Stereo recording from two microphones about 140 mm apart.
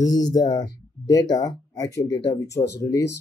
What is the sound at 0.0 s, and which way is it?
Speech, 25° left (ahead or behind).